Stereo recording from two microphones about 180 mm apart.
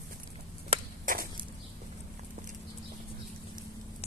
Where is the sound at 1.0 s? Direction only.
50° right (ahead or behind).